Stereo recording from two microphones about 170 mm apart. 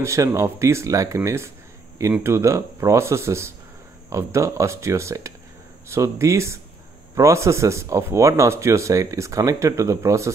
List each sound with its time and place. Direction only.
0.0 s speech: 20° right (ahead or behind)